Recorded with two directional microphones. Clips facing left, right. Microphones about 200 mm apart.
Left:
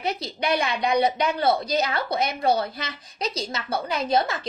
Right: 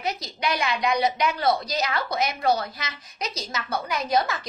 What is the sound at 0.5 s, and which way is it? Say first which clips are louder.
A woman's voice: left 1 dB; 35° left (ahead or behind).